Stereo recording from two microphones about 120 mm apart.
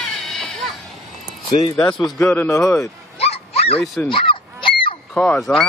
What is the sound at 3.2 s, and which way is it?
Dog, 55° left (ahead or behind).